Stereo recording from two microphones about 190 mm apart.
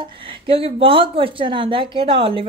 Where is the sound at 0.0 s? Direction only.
25° right (ahead or behind).